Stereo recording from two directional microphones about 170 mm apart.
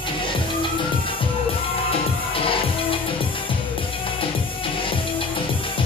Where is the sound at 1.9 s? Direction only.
30° left (ahead or behind).